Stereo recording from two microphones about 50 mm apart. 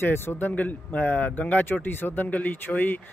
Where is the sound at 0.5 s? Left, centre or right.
Left.